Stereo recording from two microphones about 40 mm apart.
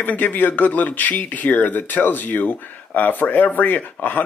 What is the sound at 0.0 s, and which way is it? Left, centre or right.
Speech, left.